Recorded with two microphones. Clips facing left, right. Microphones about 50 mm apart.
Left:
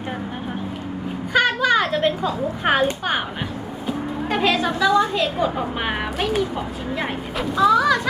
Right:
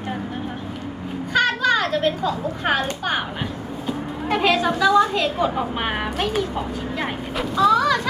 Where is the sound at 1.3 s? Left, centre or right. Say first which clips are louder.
Left 1 dB; centre.